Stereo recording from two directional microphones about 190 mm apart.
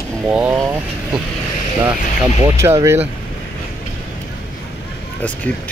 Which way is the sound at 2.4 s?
15° right (ahead or behind).